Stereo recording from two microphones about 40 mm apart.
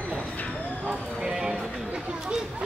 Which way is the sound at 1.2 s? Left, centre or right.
Centre.